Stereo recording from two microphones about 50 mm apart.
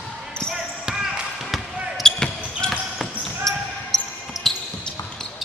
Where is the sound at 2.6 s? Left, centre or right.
Centre.